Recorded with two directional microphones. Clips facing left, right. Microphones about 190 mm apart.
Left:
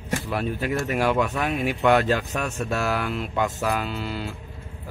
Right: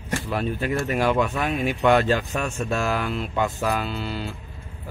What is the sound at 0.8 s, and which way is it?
Music, 10° left (ahead or behind).